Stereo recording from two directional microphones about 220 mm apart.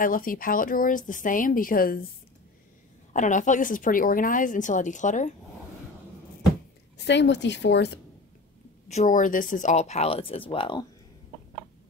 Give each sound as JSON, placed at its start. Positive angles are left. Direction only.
{"t": 0.0, "sound": "a woman's voice", "side_deg": 40}
{"t": 3.1, "sound": "a woman's voice", "side_deg": 35}
{"t": 7.0, "sound": "speech", "side_deg": 50}
{"t": 8.8, "sound": "a woman's voice", "side_deg": 35}